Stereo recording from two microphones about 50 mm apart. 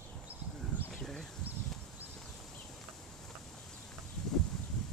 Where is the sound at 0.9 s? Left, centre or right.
Centre.